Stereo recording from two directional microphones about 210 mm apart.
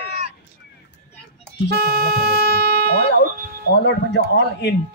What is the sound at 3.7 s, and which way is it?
Speech, 55° left (ahead or behind).